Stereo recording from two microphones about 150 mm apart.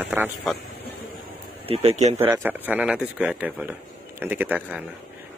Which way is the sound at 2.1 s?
15° right (ahead or behind).